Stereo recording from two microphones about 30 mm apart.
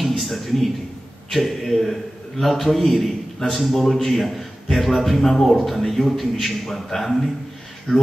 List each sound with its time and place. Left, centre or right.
0.2 s a man's voice: centre
5.4 s a man's voice: centre
7.9 s speech: centre